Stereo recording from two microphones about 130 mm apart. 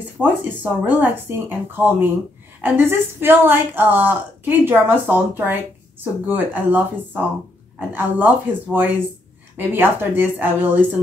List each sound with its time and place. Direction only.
0.2 s a woman's voice: 15° right (ahead or behind)